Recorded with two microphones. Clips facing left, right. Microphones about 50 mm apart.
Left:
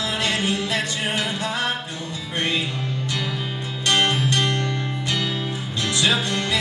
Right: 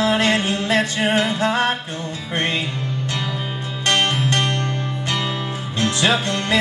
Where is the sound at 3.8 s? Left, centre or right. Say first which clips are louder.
Right 1 dB; right.